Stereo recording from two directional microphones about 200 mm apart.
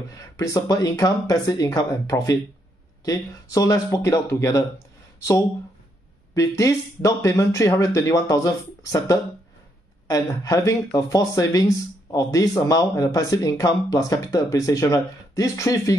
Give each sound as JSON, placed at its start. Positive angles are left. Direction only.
{"t": 0.1, "sound": "speech", "side_deg": 15}